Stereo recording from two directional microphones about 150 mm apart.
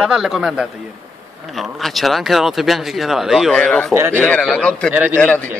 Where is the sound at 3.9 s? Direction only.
15° right (ahead or behind).